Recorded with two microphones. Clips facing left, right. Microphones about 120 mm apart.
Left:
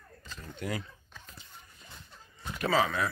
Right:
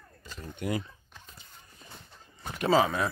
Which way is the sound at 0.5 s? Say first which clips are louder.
Right 4 dB; 20° right (ahead or behind).